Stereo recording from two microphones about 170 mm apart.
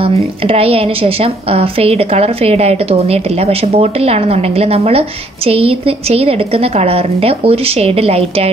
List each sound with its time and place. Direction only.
0.0 s a woman's voice: 35° right (ahead or behind)